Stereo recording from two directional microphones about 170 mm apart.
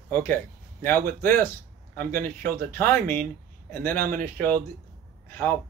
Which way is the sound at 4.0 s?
55° right (ahead or behind).